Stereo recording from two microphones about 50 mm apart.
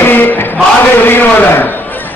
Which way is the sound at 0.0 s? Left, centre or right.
Left.